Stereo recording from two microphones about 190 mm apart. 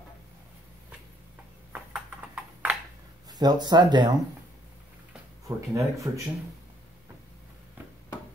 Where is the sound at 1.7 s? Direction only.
10° right (ahead or behind).